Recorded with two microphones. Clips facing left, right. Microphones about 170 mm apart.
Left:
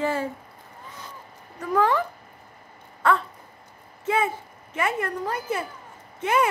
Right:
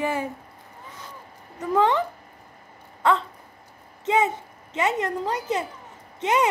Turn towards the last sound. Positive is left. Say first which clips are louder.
# right 1 dB
turn(degrees=-20)  # may be behind; listen again after turning